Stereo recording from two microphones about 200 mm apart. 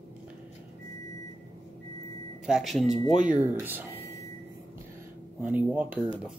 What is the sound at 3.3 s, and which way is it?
Speech, 10° right (ahead or behind).